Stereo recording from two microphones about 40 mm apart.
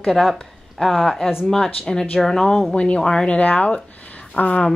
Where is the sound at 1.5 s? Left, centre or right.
Centre.